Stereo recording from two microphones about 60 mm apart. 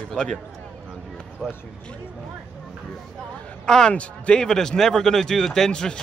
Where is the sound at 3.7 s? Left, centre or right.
Centre.